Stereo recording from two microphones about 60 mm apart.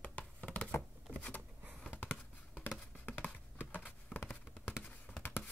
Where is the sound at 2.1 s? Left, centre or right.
Left.